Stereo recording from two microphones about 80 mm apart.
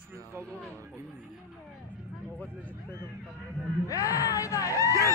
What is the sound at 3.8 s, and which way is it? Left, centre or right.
Speech, left.